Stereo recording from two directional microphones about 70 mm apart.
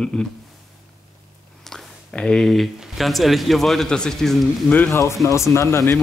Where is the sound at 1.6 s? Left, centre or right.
Centre.